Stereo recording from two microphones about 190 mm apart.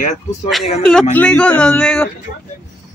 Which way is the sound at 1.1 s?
5° left (ahead or behind).